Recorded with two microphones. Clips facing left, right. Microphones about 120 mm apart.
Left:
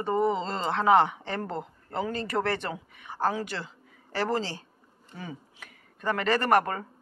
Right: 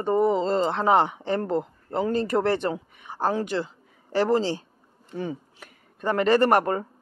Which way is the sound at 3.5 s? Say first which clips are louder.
Right 9 dB; 15° right (ahead or behind).